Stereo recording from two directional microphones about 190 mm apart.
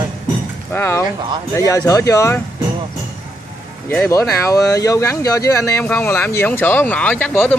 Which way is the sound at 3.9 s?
15° left (ahead or behind).